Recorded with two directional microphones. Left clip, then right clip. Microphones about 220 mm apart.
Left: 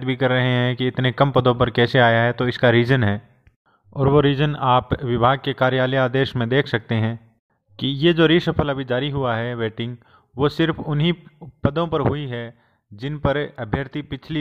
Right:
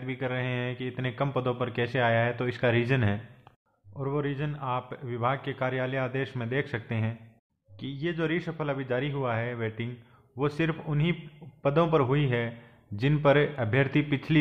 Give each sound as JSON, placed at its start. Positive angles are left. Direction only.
{"t": 0.0, "sound": "a man's voice", "side_deg": 45}